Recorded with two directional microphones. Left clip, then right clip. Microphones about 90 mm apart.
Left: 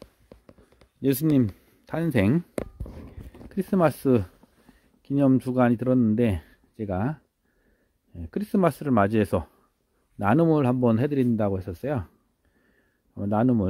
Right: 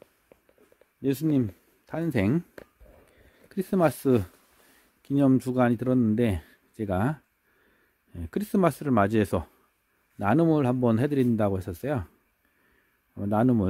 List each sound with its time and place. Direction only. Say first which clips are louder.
1.3 s speech: left 3 dB; 50° left (ahead or behind)
2.1 s speech: left 3 dB; 25° left (ahead or behind)
3.4 s speech: left 1 dB; 15° left (ahead or behind); by 6.6 s centre (ahead or behind)
6.8 s speech: right 1 dB; 25° right (ahead or behind)
8.5 s speech: left 1 dB; centre (ahead or behind)
10.1 s speech: left 2 dB; 15° left (ahead or behind)
10.8 s speech: left 1 dB; centre (ahead or behind)
13.1 s a man's voice: left 1 dB; centre (ahead or behind)